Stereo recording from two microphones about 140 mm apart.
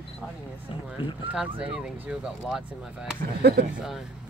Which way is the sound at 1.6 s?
5° right (ahead or behind).